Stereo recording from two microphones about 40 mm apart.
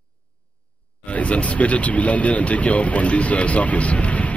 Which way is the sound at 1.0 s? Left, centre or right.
Left.